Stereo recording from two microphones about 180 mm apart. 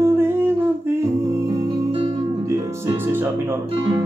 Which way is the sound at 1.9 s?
30° right (ahead or behind).